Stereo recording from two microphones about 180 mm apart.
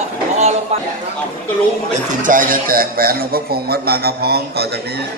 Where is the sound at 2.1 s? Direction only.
45° right (ahead or behind).